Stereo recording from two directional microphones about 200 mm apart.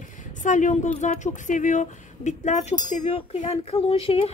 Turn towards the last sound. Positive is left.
turn(degrees=30)  # may be behind; listen again after turning